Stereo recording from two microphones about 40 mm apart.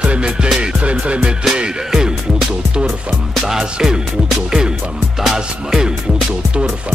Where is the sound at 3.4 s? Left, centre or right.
Centre.